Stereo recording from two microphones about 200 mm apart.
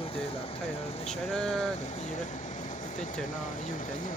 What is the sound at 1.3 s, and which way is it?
Speech, centre (ahead or behind).